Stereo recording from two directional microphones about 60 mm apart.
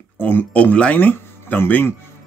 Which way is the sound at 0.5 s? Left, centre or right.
Left.